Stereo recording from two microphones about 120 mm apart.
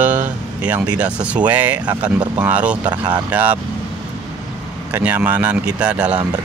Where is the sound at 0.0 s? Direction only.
15° right (ahead or behind).